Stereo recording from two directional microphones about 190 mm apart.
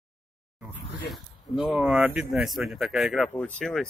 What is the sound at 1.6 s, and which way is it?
Speech, 5° right (ahead or behind).